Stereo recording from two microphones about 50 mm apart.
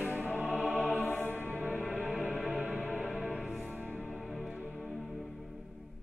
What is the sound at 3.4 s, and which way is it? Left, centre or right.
Music, centre.